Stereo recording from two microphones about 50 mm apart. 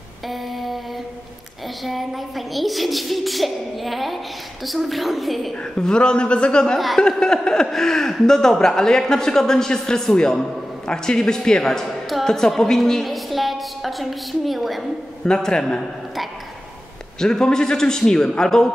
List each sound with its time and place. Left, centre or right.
0.3 s a sound: centre
1.9 s a child's voice: centre
5.6 s a woman's voice: centre
15.2 s speech: centre
17.2 s speech: centre